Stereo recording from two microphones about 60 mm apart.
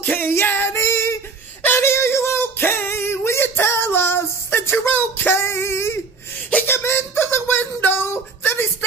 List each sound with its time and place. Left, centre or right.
0.0 s female singing: left
0.7 s child singing: left
1.8 s a sound: left